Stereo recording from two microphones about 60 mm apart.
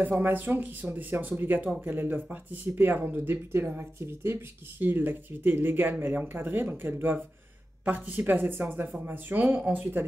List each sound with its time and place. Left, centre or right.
0.1 s speech: right